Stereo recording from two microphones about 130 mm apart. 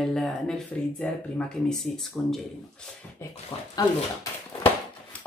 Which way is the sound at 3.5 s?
45° left (ahead or behind).